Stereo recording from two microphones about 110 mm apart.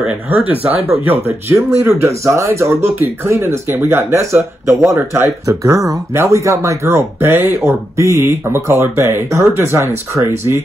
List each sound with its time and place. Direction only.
0.0 s speech: 15° right (ahead or behind)